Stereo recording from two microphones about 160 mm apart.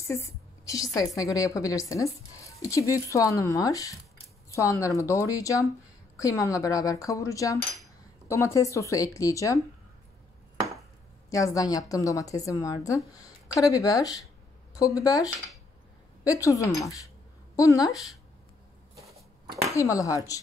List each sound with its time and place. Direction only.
0.0 s a woman's voice: 20° left (ahead or behind)
11.2 s a woman's voice: 20° left (ahead or behind)
16.3 s a woman's voice: 20° left (ahead or behind)
19.0 s a sound: 25° right (ahead or behind)
19.7 s a woman's voice: 20° left (ahead or behind)